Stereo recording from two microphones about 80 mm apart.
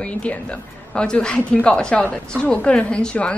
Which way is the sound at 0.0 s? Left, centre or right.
Centre.